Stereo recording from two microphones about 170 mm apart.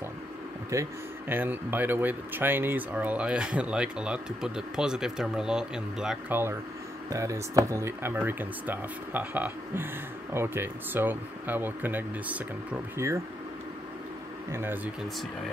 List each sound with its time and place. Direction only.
0.7 s speech: 20° right (ahead or behind)
14.5 s speech: 15° right (ahead or behind)